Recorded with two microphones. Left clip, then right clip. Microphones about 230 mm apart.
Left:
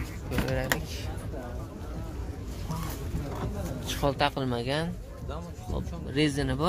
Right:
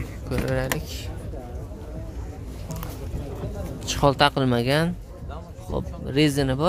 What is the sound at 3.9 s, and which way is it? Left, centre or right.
Speech, right.